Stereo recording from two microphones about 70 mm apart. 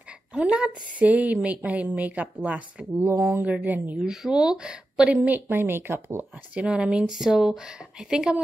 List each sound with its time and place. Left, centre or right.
0.3 s a woman's voice: centre
4.0 s a woman's voice: centre; by 6.2 s right
6.5 s speech: centre